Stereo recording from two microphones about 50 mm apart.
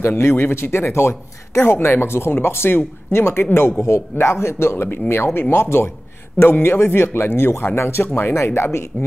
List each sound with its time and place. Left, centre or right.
0.0 s a man's voice: left
3.8 s speech: left
4.8 s a man's voice: left